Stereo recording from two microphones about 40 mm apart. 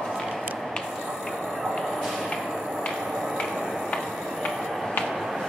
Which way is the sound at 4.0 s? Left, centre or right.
Centre.